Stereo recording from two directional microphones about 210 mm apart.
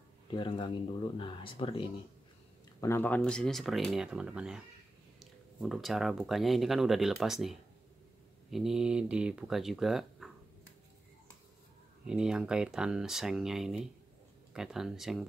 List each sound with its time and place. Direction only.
0.3 s speech: 25° left (ahead or behind)
2.8 s speech: 10° left (ahead or behind)
12.1 s speech: 5° right (ahead or behind)